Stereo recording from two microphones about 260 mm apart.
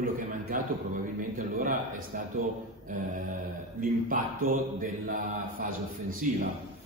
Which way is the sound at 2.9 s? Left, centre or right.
Right.